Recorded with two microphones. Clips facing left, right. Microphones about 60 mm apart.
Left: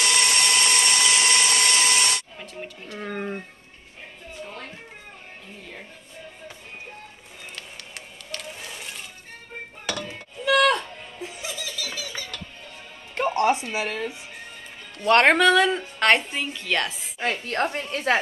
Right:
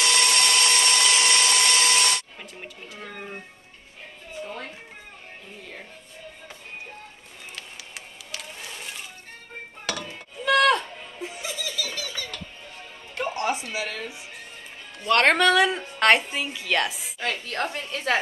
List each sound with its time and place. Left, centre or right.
0.0 s tools: centre
2.4 s speech: centre
3.0 s a sound: left
7.5 s music: centre
10.1 s a sound: centre
11.3 s music: centre
13.1 s music: left
15.2 s a woman's voice: centre
17.2 s a woman's voice: left